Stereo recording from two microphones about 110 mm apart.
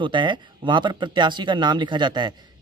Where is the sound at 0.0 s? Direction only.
45° right (ahead or behind).